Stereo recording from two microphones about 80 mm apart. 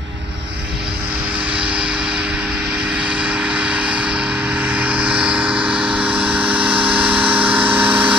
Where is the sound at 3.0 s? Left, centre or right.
Centre.